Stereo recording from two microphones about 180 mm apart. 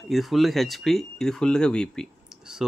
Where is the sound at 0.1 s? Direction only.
Centre (ahead or behind).